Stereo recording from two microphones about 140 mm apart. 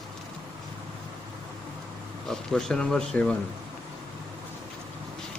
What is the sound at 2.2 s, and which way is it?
Speech, 5° left (ahead or behind).